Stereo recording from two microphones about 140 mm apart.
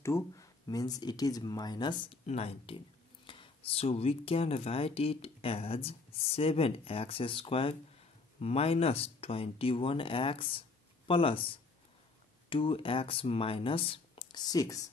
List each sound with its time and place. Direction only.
0.0 s speech: 20° left (ahead or behind)
2.2 s speech: 45° left (ahead or behind)
12.4 s speech: 40° left (ahead or behind)